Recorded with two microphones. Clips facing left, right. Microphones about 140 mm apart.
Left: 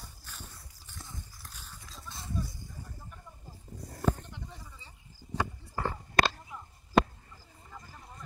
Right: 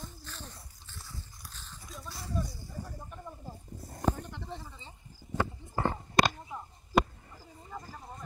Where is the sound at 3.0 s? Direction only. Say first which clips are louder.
Right 6 dB; 90° right.